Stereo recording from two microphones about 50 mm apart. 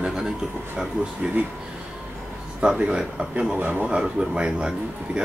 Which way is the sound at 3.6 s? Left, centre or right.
Right.